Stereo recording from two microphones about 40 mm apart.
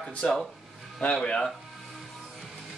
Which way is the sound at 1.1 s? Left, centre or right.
Left.